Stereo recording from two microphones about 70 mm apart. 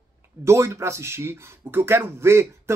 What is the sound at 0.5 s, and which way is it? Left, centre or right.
Speech, right.